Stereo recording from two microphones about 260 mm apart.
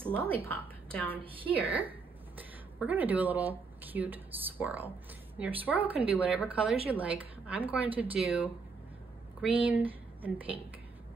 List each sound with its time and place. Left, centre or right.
0.0 s a woman's voice: centre
1.2 s a woman's voice: right
2.8 s a woman's voice: centre